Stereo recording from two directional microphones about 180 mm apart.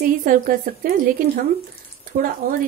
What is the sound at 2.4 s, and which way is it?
Speech, 50° right (ahead or behind).